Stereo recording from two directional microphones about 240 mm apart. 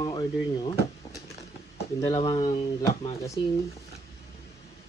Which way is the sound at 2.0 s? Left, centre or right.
Left.